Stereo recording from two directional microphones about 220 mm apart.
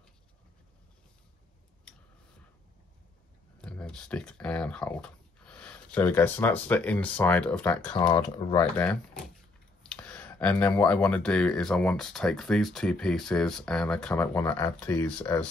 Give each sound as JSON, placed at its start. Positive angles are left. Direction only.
{"t": 3.6, "sound": "speech", "side_deg": 5}
{"t": 8.1, "sound": "speech", "side_deg": 20}
{"t": 8.7, "sound": "speech", "side_deg": 5}